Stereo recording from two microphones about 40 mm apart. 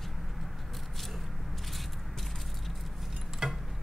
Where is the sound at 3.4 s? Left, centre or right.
Centre.